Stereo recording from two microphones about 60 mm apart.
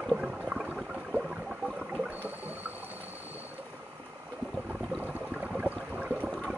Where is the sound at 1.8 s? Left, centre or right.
Right.